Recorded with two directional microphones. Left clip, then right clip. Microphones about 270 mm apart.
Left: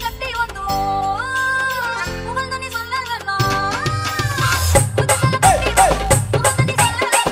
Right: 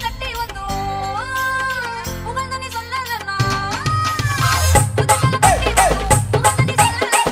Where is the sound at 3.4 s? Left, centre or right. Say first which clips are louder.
Left 3 dB; centre.